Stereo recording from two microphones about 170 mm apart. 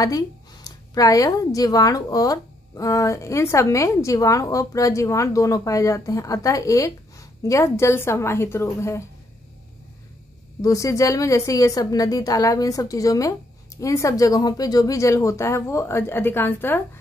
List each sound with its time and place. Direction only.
0.7 s speech: 20° left (ahead or behind)
10.6 s speech: 20° left (ahead or behind)